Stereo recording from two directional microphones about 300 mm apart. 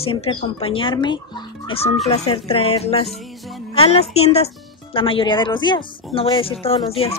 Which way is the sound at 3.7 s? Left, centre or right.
Centre.